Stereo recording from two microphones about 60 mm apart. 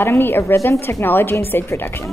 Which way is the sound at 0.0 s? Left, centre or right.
Left.